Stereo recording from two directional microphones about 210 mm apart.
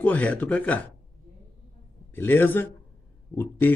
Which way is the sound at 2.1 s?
10° left (ahead or behind).